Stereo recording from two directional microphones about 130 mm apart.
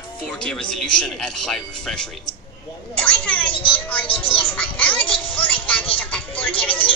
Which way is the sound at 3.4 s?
45° left (ahead or behind).